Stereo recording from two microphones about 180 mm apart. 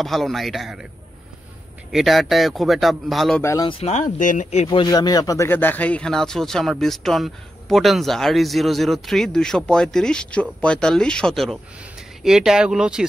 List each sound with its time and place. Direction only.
0.0 s speech: centre (ahead or behind)
1.9 s speech: centre (ahead or behind)
3.4 s speech: 20° left (ahead or behind)
3.8 s speech: 40° left (ahead or behind)
4.6 s speech: 20° left (ahead or behind); by 13.0 s 5° right (ahead or behind)